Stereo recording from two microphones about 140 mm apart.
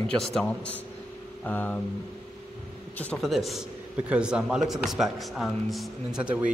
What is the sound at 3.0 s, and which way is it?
A man's voice, 5° left (ahead or behind).